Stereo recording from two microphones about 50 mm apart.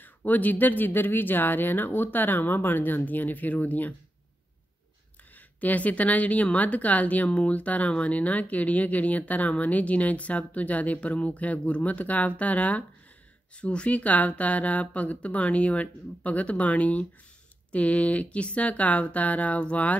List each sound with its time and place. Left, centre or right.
0.0 s speech: left
5.6 s speech: left